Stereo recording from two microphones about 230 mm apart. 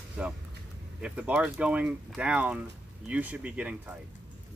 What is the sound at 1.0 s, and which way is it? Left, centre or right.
Speech, centre.